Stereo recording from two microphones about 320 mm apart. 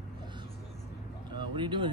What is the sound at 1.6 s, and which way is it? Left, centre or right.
Speech, centre.